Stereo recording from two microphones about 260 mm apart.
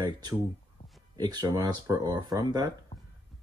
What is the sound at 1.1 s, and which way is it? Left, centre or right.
Speech, centre.